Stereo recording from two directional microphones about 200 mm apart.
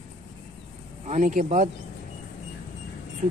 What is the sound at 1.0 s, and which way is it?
Speech, 40° right (ahead or behind).